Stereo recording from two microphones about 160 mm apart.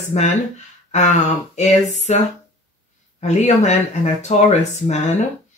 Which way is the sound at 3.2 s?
45° left (ahead or behind).